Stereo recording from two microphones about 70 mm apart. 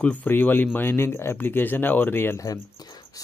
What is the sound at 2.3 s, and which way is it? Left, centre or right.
Speech, left.